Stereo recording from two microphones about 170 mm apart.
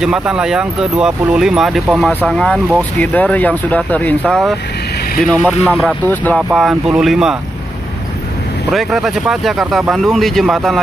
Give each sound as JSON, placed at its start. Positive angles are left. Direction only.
{"t": 0.0, "sound": "speech", "side_deg": -5}
{"t": 8.7, "sound": "speech", "side_deg": 0}